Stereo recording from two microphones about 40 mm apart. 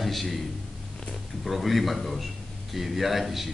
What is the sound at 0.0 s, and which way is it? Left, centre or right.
Speech, centre.